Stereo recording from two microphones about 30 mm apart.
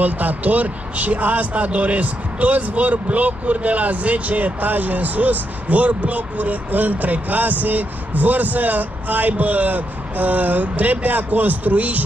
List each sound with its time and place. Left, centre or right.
0.0 s a man's voice: right